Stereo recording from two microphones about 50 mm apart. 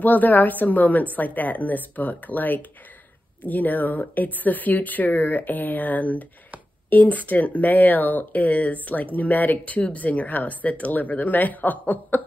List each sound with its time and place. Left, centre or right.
0.0 s speech: left